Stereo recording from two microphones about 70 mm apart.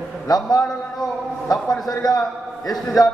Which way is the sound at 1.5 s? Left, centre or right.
Centre.